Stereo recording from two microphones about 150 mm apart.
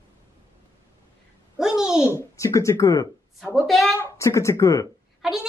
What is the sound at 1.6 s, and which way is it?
Child singing, 5° right (ahead or behind).